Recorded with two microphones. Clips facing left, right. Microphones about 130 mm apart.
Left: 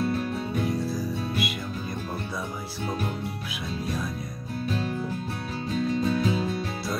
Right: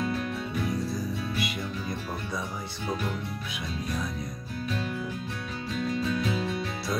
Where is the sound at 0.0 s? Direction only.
35° left (ahead or behind).